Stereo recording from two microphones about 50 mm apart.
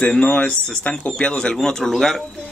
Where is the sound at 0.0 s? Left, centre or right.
Left.